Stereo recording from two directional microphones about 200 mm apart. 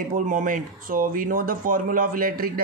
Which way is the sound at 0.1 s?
40° right (ahead or behind).